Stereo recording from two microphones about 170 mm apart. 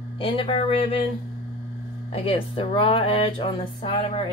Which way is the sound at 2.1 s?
35° left (ahead or behind).